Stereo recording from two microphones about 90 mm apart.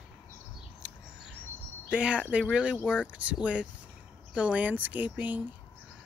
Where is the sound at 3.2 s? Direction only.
15° right (ahead or behind).